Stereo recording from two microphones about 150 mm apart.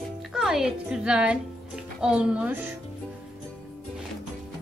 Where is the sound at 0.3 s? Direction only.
5° right (ahead or behind).